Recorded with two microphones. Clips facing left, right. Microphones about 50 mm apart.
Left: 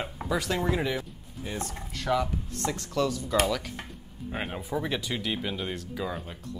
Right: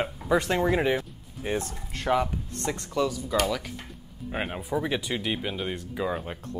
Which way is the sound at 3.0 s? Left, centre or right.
Centre.